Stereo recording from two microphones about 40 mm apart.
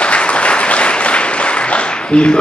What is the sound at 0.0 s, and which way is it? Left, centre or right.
Applause, left.